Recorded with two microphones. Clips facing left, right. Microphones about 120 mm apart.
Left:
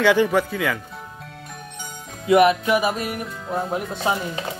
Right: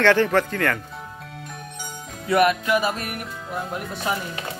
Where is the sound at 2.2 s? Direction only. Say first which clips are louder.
Left 3 dB; 20° left (ahead or behind).